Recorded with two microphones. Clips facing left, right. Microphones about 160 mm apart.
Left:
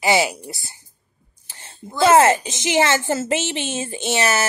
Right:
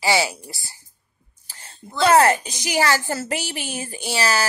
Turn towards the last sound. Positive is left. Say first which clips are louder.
# left 2 dB
turn(degrees=20)  # may be behind; listen again after turning